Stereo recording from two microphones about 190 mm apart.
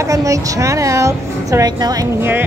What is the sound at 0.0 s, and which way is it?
A woman's voice, 15° right (ahead or behind).